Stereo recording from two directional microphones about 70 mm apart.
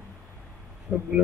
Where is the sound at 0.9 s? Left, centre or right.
Right.